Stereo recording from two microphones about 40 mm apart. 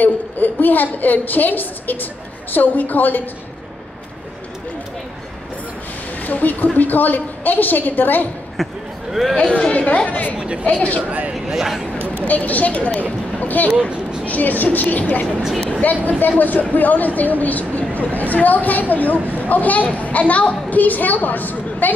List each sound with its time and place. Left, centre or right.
0.0 s a child's voice: left
6.2 s a woman's voice: left
8.6 s speech: centre
9.5 s speech: left
11.0 s speech: right
11.4 s speech: centre
12.3 s a child's voice: left